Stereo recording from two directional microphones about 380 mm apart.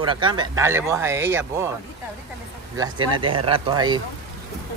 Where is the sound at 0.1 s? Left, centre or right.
Centre.